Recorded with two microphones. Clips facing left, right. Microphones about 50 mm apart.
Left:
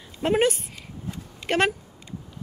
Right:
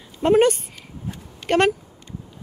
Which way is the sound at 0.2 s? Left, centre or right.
Centre.